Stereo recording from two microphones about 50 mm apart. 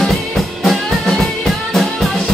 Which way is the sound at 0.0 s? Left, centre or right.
Centre.